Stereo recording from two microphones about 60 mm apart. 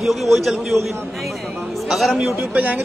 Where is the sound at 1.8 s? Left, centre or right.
Centre.